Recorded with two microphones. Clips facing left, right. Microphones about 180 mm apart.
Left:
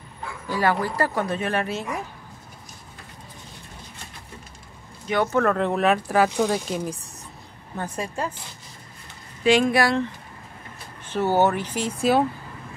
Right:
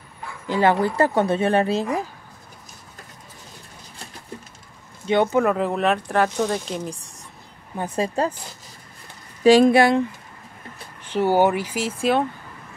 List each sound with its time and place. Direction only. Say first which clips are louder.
0.5 s speech: right 4 dB; 25° right (ahead or behind)
5.0 s speech: right 4 dB; 25° right (ahead or behind)
5.3 s speech: right 1 dB; 10° right (ahead or behind)
9.4 s speech: right 6 dB; 35° right (ahead or behind)
9.8 s speech: right 5 dB; 20° right (ahead or behind)
11.1 s speech: right 2 dB; 10° right (ahead or behind)
12.0 s speech: left 1 dB; 5° left (ahead or behind)